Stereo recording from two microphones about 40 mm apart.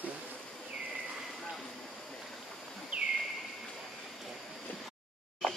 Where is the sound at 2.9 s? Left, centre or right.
Right.